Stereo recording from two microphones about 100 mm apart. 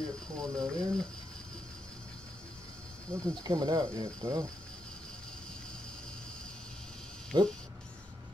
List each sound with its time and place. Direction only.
0.4 s speech: 5° left (ahead or behind)
3.1 s speech: 40° right (ahead or behind)
7.3 s speech: 45° right (ahead or behind)